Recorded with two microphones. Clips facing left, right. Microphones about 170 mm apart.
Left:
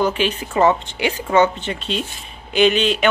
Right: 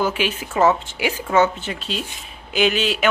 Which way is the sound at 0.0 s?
5° right (ahead or behind).